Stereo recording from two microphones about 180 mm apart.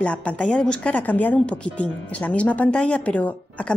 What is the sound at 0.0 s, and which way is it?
Speech, 5° left (ahead or behind).